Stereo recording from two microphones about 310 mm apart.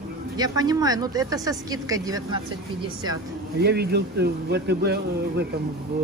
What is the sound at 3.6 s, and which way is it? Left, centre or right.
Speech, right.